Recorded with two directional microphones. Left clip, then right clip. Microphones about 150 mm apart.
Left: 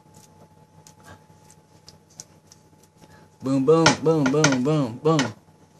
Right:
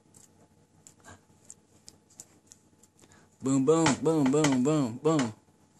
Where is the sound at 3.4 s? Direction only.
65° right (ahead or behind).